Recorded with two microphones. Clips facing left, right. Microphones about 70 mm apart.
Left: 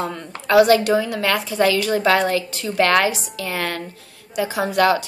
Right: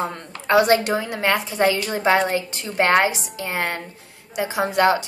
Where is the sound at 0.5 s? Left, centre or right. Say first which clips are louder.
Left 3 dB; right.